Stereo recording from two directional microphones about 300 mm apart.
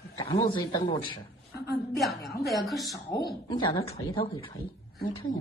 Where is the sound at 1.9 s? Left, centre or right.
Centre.